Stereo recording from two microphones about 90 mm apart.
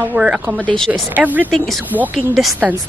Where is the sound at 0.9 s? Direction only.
20° right (ahead or behind).